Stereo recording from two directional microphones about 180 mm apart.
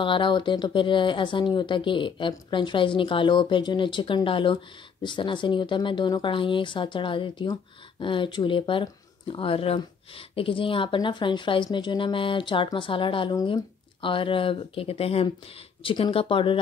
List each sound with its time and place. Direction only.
0.0 s speech: 25° left (ahead or behind)